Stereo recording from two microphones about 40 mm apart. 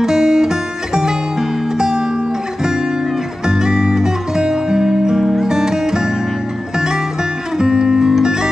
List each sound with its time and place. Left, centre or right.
0.0 s music: centre
3.4 s music: centre
7.5 s music: centre